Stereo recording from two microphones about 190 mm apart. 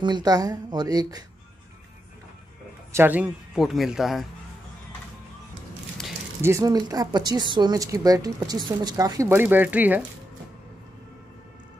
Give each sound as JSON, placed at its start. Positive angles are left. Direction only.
{"t": 0.0, "sound": "a woman's voice", "side_deg": -20}
{"t": 2.9, "sound": "a man's voice", "side_deg": -10}
{"t": 6.4, "sound": "a woman's voice", "side_deg": -15}